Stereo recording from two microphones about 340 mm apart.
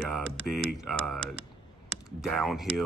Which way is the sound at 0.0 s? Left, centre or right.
Centre.